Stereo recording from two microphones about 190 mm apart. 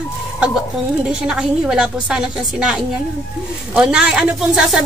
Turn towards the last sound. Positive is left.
turn(degrees=0)  # may be behind; listen again after turning